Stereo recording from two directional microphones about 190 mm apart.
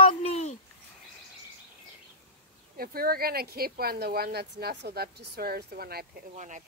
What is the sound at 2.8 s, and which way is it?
Speech, 50° right (ahead or behind).